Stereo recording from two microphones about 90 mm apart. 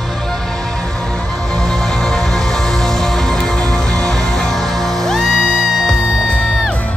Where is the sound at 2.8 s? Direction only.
5° left (ahead or behind).